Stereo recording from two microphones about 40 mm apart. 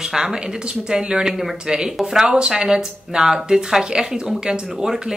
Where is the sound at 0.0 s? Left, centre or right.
Centre.